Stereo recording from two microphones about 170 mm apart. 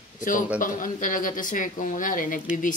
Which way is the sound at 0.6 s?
50° left (ahead or behind).